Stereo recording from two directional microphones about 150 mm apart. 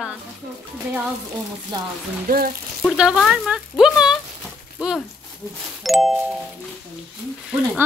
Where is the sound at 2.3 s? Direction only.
75° right (ahead or behind).